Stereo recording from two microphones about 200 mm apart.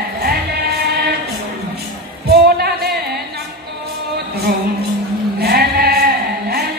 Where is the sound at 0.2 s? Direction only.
50° right (ahead or behind).